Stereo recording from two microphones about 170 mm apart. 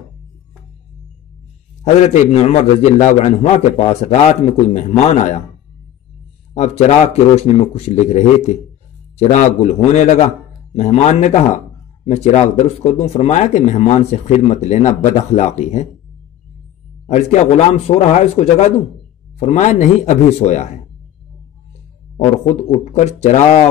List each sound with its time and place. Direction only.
2.0 s a man's voice: 40° left (ahead or behind)
6.5 s a man's voice: 40° left (ahead or behind)
17.1 s a man's voice: 40° left (ahead or behind)
22.1 s a man's voice: 40° left (ahead or behind)